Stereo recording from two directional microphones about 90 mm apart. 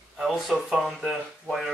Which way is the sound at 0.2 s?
Centre (ahead or behind).